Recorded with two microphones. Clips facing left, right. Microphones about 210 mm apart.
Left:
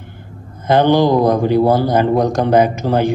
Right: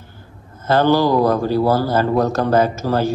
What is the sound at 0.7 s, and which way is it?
Speech, 15° left (ahead or behind).